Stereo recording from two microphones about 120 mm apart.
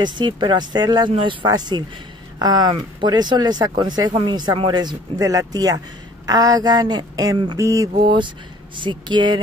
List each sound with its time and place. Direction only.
0.0 s speech: 40° right (ahead or behind)
7.5 s mantra: 25° right (ahead or behind)
8.8 s speech: 40° right (ahead or behind)